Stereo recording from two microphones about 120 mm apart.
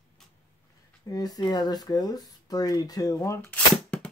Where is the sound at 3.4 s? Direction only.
10° left (ahead or behind).